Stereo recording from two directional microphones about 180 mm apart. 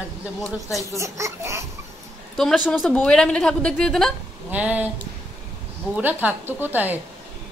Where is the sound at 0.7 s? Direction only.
15° right (ahead or behind).